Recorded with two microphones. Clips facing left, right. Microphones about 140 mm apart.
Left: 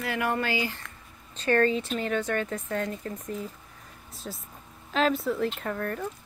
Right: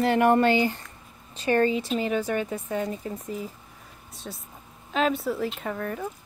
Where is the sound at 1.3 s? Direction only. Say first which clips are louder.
Right 1 dB; 15° right (ahead or behind).